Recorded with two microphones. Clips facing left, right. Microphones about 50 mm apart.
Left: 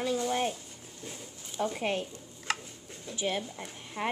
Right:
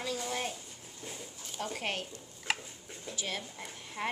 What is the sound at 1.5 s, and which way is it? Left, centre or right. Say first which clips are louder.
Speech: left 6 dB; left.